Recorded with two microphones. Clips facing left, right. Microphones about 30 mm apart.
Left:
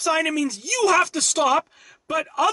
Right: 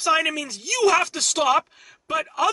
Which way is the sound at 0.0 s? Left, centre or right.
Centre.